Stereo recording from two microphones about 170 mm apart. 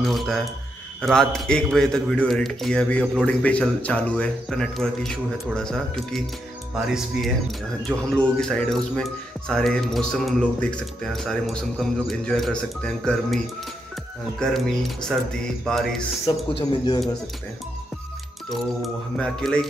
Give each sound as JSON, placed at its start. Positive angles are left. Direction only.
{"t": 0.0, "sound": "a sound", "side_deg": 0}
{"t": 1.0, "sound": "speech", "side_deg": 5}
{"t": 14.4, "sound": "speech", "side_deg": 0}
{"t": 16.5, "sound": "speech", "side_deg": 25}
{"t": 18.8, "sound": "speech", "side_deg": 5}